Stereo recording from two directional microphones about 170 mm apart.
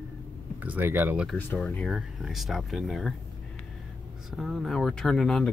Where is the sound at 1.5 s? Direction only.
10° left (ahead or behind).